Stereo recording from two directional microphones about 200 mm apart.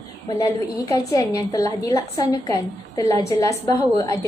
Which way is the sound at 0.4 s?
15° left (ahead or behind).